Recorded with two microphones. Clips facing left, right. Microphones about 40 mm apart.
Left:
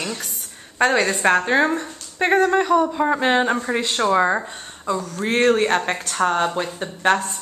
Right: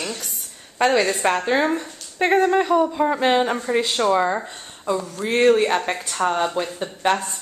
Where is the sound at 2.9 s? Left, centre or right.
Centre.